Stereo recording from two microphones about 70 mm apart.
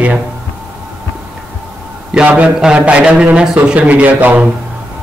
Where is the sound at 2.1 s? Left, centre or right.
Centre.